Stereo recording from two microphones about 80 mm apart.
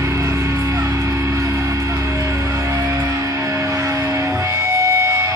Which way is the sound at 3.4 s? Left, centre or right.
Right.